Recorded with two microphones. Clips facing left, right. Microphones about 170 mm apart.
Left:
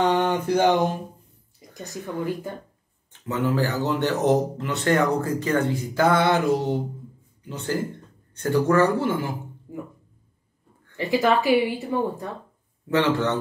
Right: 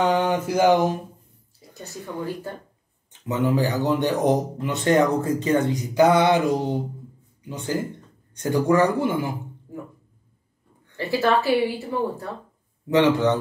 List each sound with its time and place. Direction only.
0.0 s speech: 5° right (ahead or behind)
1.7 s speech: 15° left (ahead or behind)
3.1 s speech: 15° right (ahead or behind)
11.0 s speech: 15° left (ahead or behind)
12.9 s speech: 15° right (ahead or behind)